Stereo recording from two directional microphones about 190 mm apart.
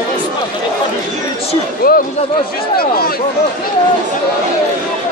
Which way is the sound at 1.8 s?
50° left (ahead or behind).